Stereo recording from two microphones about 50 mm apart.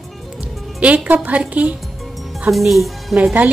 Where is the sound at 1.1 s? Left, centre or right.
Right.